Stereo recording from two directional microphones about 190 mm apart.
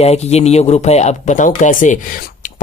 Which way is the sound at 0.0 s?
35° left (ahead or behind).